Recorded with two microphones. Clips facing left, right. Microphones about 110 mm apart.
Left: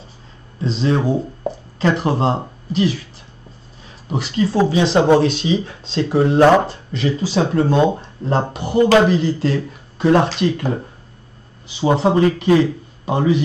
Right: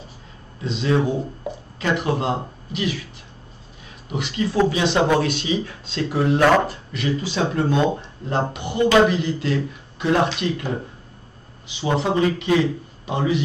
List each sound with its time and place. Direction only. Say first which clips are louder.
0.6 s speech: left 2 dB; 35° left (ahead or behind)
4.1 s speech: left 5 dB; 35° left (ahead or behind)
11.8 s speech: left 5 dB; 35° left (ahead or behind)